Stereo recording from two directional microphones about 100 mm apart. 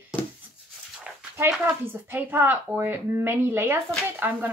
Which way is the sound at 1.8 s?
20° right (ahead or behind).